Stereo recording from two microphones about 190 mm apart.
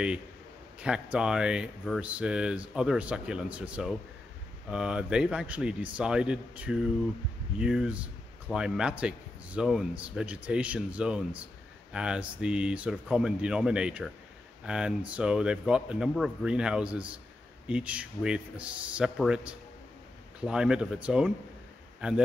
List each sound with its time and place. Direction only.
0.7 s speech: 5° right (ahead or behind)